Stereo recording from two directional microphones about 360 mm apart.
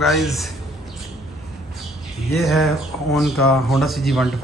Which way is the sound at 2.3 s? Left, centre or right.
Centre.